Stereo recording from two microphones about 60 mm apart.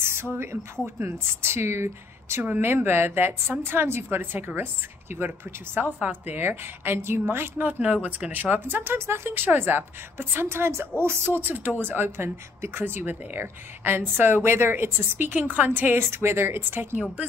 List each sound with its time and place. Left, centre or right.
0.0 s speech: right
5.9 s a woman's voice: right
6.3 s speech: right
16.0 s speech: right